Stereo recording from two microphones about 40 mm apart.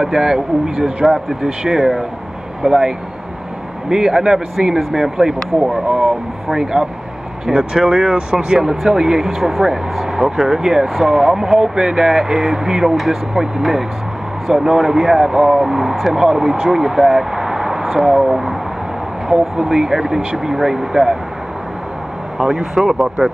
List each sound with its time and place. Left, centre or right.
0.0 s speech: centre
1.4 s speech: centre
3.9 s speech: centre
7.5 s speech: right
8.5 s speech: centre
19.5 s speech: centre
22.4 s speech: centre